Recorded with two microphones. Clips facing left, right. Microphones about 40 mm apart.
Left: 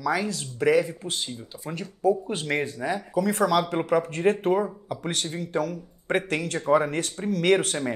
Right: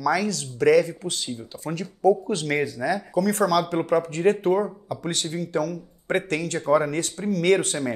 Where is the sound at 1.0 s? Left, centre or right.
Left.